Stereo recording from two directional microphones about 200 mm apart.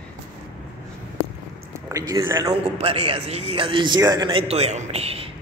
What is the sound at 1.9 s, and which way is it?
Speech, 20° right (ahead or behind).